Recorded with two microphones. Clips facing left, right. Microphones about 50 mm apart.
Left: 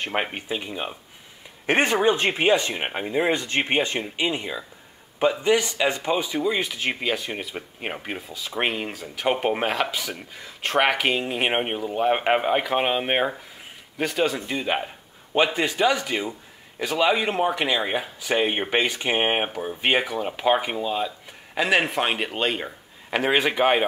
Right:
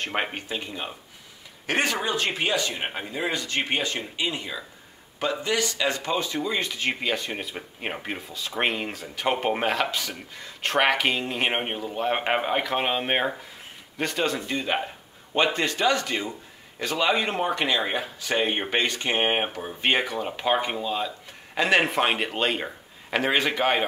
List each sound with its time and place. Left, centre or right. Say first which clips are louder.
0.0 s a man's voice: left 1 dB; centre
1.7 s a man's voice: left 5 dB; left